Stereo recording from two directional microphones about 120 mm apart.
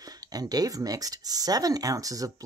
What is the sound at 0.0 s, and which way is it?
Speech, 30° right (ahead or behind).